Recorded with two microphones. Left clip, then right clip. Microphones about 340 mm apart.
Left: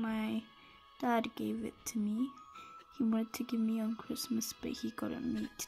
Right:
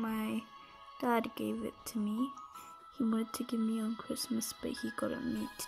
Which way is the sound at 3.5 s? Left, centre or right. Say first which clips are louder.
Even; right.